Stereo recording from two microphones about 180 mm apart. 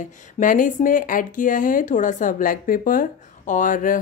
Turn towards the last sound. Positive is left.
turn(degrees=45)  # may be behind; listen again after turning